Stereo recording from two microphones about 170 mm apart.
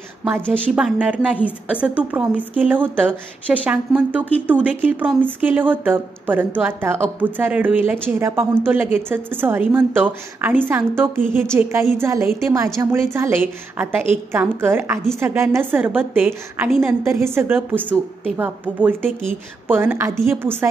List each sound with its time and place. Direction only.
0.7 s speech: 5° right (ahead or behind)